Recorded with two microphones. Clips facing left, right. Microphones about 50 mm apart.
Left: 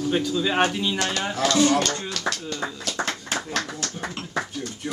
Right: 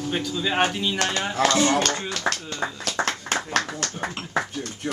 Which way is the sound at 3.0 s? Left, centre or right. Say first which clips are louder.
Right 3 dB; right.